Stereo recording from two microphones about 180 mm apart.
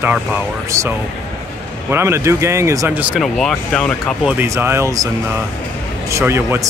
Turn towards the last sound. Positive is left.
turn(degrees=-15)  # may be behind; listen again after turning